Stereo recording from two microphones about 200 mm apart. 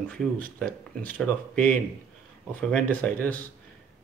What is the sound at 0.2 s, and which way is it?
Speech, 5° left (ahead or behind).